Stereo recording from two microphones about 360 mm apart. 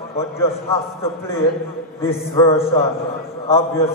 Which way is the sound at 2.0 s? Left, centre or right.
Centre.